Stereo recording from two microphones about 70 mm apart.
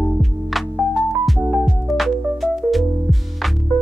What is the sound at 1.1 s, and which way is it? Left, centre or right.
Music, centre.